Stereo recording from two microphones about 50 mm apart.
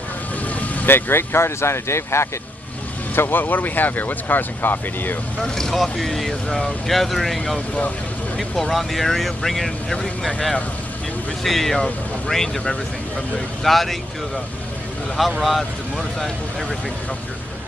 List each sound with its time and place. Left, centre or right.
0.8 s speech: left
3.2 s speech: left
5.4 s speech: centre
15.2 s speech: centre